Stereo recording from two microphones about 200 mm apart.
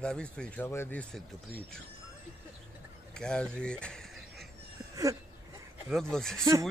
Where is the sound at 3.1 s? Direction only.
5° left (ahead or behind).